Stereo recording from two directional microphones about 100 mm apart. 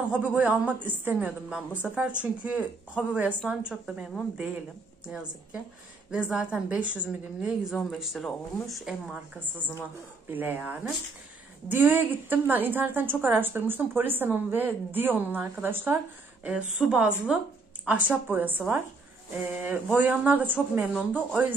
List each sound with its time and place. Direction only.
0.1 s a woman's voice: 10° right (ahead or behind)
5.0 s a woman's voice: 10° right (ahead or behind)
10.3 s a woman's voice: 20° right (ahead or behind)
16.4 s a woman's voice: 10° right (ahead or behind)